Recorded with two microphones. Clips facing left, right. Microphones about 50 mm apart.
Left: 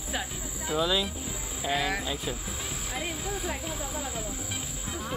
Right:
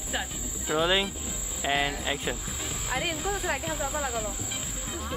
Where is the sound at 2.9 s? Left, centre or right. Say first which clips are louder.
Right 5 dB; right.